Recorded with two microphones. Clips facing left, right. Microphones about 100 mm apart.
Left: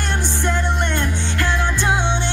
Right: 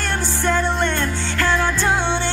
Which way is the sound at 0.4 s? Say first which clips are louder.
Right 4 dB; 20° left (ahead or behind).